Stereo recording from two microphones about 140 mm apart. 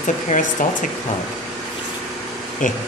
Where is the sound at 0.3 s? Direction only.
65° left (ahead or behind).